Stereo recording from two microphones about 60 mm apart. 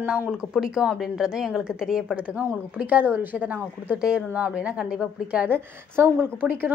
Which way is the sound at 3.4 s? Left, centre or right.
Centre.